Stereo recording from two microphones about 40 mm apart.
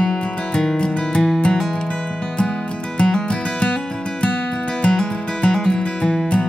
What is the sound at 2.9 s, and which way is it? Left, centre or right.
Music, left.